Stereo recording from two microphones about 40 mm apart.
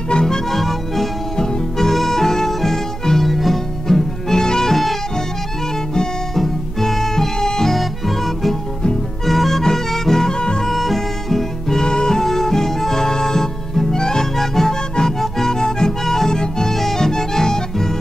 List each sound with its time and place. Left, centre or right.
0.1 s music: centre
0.5 s music: centre
6.3 s music: centre
7.7 s music: centre
10.7 s music: centre